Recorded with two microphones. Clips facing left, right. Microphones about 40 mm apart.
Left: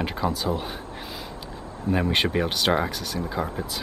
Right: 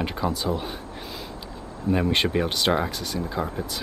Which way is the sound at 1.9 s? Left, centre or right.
Centre.